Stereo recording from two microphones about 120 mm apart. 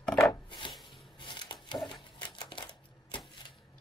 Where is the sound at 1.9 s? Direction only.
40° left (ahead or behind).